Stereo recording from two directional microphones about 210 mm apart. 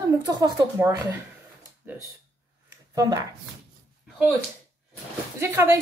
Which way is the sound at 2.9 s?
15° right (ahead or behind).